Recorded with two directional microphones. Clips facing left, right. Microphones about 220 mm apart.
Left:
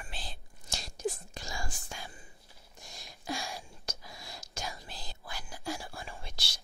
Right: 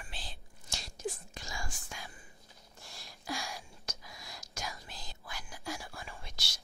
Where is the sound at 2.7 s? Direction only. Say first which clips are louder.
Left 2 dB; 15° left (ahead or behind).